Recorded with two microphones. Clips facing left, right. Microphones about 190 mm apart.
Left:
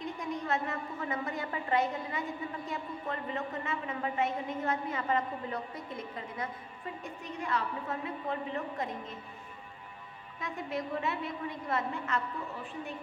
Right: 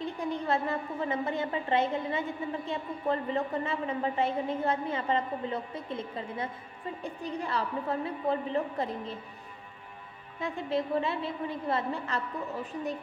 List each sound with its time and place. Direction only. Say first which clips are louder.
0.0 s a woman's voice: right 4 dB; 30° right (ahead or behind)
10.4 s a woman's voice: right 5 dB; 30° right (ahead or behind)